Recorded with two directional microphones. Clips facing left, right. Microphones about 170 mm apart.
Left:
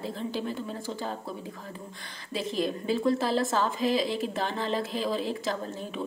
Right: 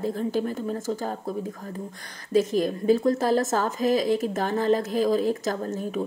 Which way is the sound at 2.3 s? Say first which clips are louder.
Right 8 dB; 45° right (ahead or behind).